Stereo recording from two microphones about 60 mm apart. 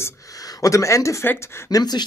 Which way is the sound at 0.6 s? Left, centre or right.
Left.